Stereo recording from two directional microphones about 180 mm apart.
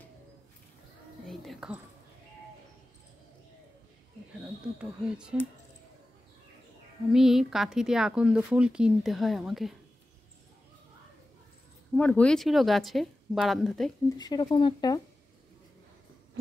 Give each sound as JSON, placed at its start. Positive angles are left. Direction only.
{"t": 1.2, "sound": "whispering", "side_deg": 0}
{"t": 4.7, "sound": "speech", "side_deg": -5}
{"t": 7.1, "sound": "speech", "side_deg": -5}
{"t": 11.9, "sound": "speech", "side_deg": 10}
{"t": 14.1, "sound": "speech", "side_deg": 20}